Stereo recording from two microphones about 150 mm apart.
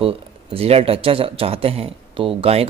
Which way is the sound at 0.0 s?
40° right (ahead or behind).